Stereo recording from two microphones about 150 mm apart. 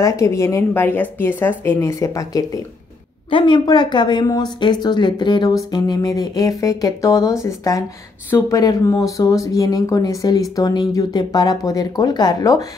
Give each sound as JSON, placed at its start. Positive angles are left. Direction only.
{"t": 0.0, "sound": "speech", "side_deg": 20}
{"t": 3.3, "sound": "speech", "side_deg": 35}